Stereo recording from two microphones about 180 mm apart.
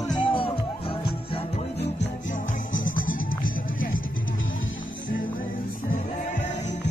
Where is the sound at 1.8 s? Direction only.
80° left.